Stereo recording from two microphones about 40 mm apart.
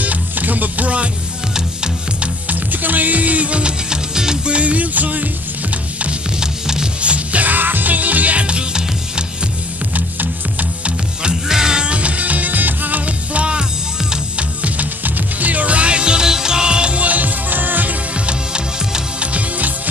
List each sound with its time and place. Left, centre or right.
0.0 s music: right
2.4 s music: right; by 4.4 s centre
4.5 s music: right
6.4 s music: centre
7.0 s music: right
7.4 s music: right
11.2 s music: centre
14.6 s music: right
18.2 s music: right